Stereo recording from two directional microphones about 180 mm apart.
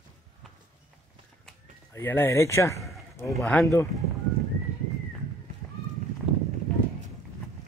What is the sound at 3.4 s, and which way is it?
Speech, 10° left (ahead or behind).